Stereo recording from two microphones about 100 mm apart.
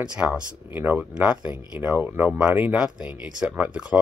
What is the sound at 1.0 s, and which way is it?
Speech, 10° right (ahead or behind).